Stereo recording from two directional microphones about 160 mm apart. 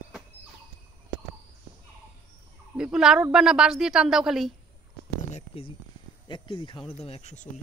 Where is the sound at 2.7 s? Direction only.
5° right (ahead or behind).